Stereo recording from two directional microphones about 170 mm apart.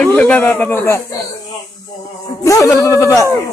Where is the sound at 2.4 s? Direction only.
20° left (ahead or behind).